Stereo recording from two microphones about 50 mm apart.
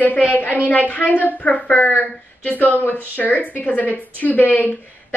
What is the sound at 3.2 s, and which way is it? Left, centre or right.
A woman's voice, left.